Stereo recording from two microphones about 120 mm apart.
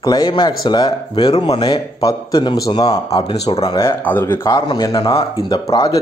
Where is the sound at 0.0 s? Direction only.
35° left (ahead or behind); by 1.6 s 55° left (ahead or behind).